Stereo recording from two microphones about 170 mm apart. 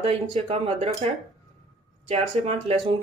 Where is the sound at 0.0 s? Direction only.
40° right (ahead or behind).